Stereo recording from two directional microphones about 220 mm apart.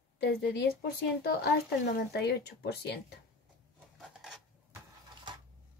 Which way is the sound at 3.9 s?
Centre (ahead or behind).